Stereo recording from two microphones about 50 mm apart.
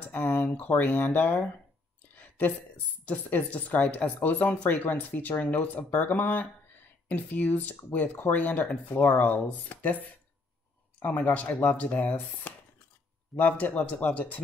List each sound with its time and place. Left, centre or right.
0.0 s speech: left
2.1 s a sound: left
3.1 s speech: left
11.5 s speech: left